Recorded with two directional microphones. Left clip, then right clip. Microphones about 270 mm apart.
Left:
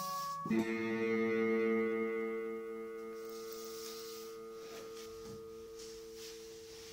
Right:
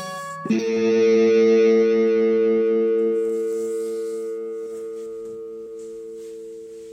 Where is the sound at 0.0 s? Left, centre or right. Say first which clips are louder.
Right 9 dB; right.